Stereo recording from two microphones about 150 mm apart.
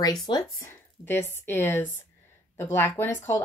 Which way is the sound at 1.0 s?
15° left (ahead or behind).